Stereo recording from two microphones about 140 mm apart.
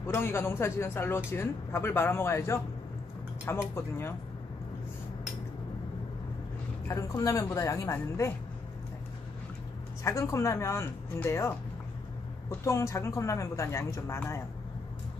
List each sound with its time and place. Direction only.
0.0 s a man's voice: 15° left (ahead or behind)
6.9 s speech: 20° left (ahead or behind)
10.0 s speech: 20° left (ahead or behind)